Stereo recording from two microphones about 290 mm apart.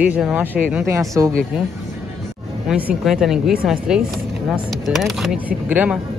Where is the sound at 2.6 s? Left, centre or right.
Centre.